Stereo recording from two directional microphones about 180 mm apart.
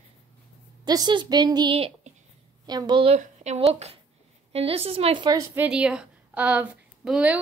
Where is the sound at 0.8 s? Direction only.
25° right (ahead or behind).